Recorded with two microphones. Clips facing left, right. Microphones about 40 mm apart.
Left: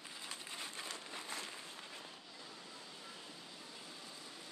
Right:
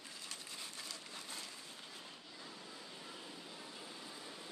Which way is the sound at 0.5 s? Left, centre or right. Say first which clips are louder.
Left 3 dB; left.